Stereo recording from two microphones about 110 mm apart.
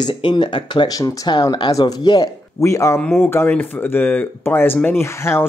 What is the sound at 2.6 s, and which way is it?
Speech, 25° left (ahead or behind).